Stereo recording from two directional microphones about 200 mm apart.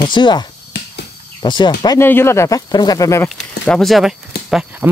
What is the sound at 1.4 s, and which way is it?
Speech, 25° left (ahead or behind).